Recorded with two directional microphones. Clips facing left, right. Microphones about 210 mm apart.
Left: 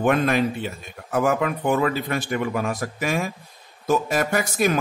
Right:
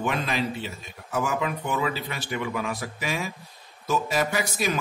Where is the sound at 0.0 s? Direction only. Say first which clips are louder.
Left 7 dB; 50° left (ahead or behind).